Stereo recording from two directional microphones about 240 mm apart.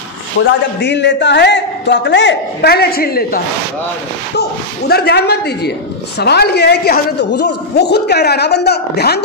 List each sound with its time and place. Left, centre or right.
0.4 s a man's voice: left